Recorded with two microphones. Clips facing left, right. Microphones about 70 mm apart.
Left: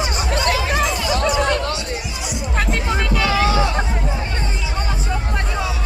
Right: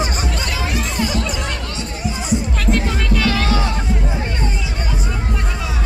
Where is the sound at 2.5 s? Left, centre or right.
Centre.